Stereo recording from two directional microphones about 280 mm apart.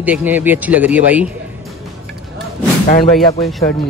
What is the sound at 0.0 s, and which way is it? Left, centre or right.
Speech, centre.